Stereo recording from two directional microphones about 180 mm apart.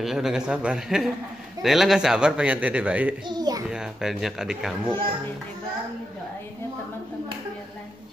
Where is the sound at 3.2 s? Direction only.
20° right (ahead or behind).